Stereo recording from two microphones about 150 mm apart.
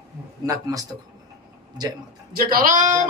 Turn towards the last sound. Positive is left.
turn(degrees=-60)  # may be behind; listen again after turning